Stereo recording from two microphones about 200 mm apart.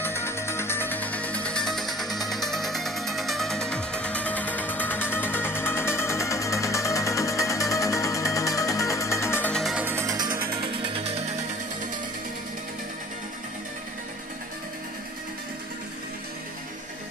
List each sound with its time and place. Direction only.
0.0 s music: 10° left (ahead or behind); by 11.4 s 30° right (ahead or behind)